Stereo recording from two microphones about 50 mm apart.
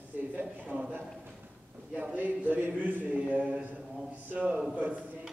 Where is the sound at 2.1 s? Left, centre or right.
Right.